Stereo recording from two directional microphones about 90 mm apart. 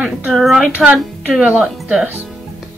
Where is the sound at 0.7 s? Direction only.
15° right (ahead or behind).